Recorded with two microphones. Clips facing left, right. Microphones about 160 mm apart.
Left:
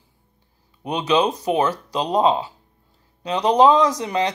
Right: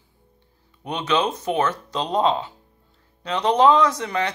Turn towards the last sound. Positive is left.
turn(degrees=15)  # may be behind; listen again after turning